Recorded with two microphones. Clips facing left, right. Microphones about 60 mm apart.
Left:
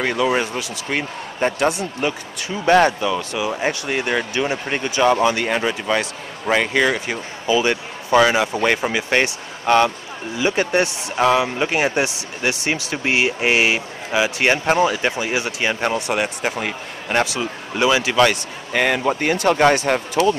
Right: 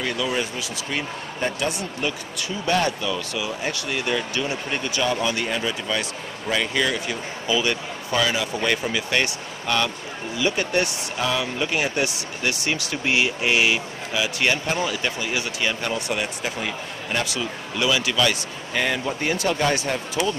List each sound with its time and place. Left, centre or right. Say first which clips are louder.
0.0 s speech: left 6 dB; left
2.0 s speech: left 4 dB; left
5.1 s speech: left 6 dB; left
7.4 s speech: left 5 dB; left
17.2 s speech: left 5 dB; left
18.2 s speech: left 6 dB; left